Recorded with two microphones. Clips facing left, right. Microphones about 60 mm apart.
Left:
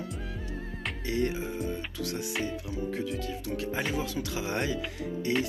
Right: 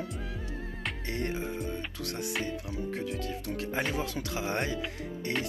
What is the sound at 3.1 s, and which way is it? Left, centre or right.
Speech, right.